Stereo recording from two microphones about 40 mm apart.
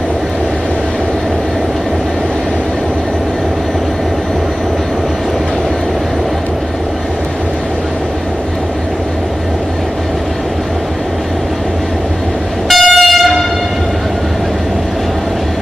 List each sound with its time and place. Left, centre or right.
12.6 s train: centre